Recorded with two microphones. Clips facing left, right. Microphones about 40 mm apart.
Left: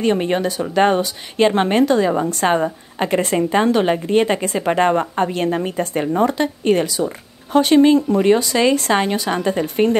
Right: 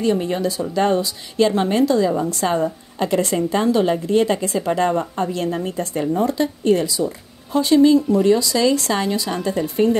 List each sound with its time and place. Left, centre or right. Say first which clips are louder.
0.0 s speech: left 2 dB; left